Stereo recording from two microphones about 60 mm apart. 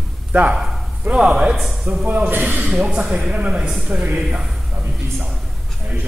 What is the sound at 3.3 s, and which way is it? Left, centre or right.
Speech, centre.